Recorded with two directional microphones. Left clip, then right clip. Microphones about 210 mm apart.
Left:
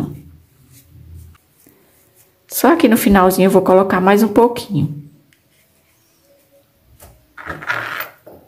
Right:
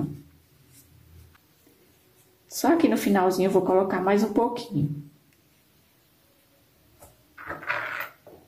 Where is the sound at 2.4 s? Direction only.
30° left (ahead or behind).